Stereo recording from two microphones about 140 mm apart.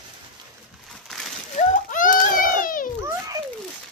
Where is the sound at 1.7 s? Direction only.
70° left (ahead or behind).